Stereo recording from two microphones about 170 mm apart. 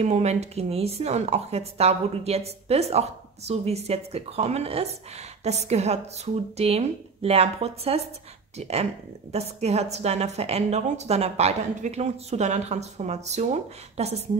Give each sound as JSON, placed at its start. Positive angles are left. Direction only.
{"t": 0.0, "sound": "a woman's voice", "side_deg": -40}